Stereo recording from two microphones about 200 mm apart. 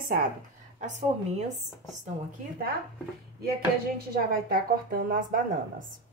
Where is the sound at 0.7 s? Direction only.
35° right (ahead or behind).